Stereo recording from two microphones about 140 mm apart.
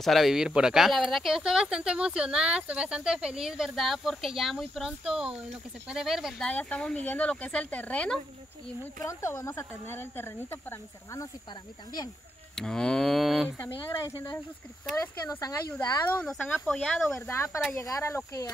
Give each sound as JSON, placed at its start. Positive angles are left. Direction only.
{"t": 0.0, "sound": "speech", "side_deg": 0}
{"t": 6.5, "sound": "speech", "side_deg": 10}
{"t": 9.0, "sound": "speech", "side_deg": 20}
{"t": 12.5, "sound": "speech", "side_deg": 5}
{"t": 13.6, "sound": "speech", "side_deg": 20}
{"t": 16.2, "sound": "speech", "side_deg": 0}
{"t": 17.3, "sound": "speech", "side_deg": 20}